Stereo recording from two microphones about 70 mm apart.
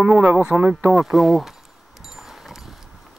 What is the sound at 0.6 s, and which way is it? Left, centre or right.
Speech, right.